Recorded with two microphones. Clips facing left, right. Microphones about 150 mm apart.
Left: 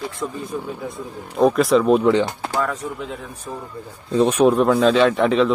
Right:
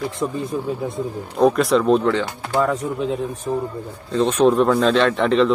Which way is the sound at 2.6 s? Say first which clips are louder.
Right 7 dB; 25° right (ahead or behind).